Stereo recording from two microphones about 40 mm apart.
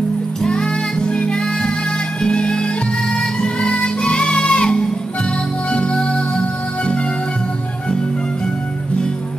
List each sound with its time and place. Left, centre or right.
0.4 s music: centre